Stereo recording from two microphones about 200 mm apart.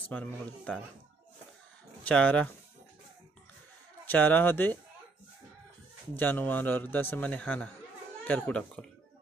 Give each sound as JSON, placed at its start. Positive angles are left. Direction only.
{"t": 0.1, "sound": "a man's voice", "side_deg": 5}
{"t": 2.0, "sound": "a man's voice", "side_deg": 5}
{"t": 4.0, "sound": "a man's voice", "side_deg": 10}
{"t": 6.1, "sound": "a man's voice", "side_deg": 10}